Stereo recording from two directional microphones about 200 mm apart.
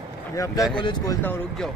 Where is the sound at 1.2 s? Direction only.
5° left (ahead or behind).